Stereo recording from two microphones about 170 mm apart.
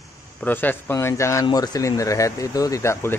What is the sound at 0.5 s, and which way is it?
A man's voice, 10° left (ahead or behind).